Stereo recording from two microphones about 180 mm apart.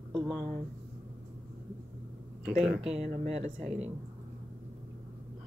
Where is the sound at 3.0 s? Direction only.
40° right (ahead or behind).